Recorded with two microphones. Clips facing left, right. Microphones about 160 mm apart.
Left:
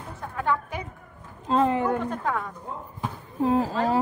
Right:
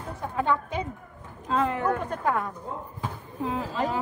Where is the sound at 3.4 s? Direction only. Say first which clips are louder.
Left 8 dB; 40° left (ahead or behind).